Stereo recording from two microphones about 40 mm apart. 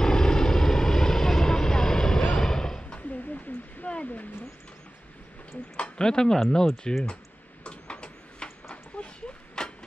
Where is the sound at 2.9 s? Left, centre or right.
Left.